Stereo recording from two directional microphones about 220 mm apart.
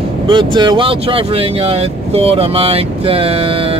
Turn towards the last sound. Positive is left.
turn(degrees=-25)  # may be behind; listen again after turning